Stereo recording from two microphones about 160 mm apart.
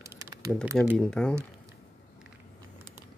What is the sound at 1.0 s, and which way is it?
Speech, 5° left (ahead or behind).